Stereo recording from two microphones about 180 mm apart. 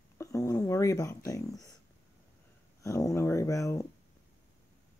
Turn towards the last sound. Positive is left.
turn(degrees=15)  # may be behind; listen again after turning